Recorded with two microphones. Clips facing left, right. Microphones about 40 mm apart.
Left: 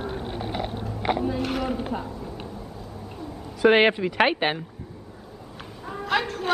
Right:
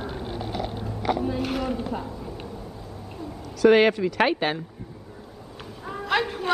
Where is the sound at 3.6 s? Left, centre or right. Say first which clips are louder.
Right 1 dB; left.